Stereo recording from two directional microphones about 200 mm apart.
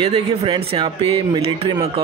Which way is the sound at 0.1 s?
30° right (ahead or behind).